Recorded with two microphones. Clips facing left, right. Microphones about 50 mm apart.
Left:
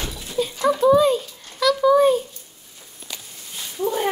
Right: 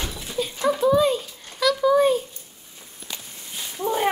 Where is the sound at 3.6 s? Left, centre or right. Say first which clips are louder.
Even; centre.